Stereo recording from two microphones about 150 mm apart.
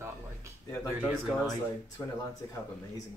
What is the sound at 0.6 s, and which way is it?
Speech, 20° left (ahead or behind).